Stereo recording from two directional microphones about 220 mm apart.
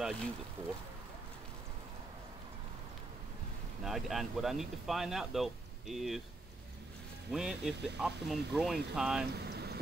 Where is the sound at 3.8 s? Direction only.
Centre (ahead or behind).